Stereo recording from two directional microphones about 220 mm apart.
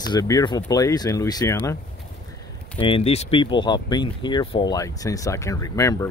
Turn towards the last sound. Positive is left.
turn(degrees=15)  # may be behind; listen again after turning